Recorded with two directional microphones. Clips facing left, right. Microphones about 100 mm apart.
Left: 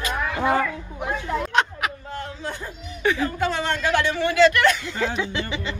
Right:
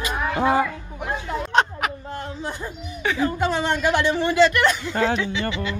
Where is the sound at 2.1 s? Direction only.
20° right (ahead or behind).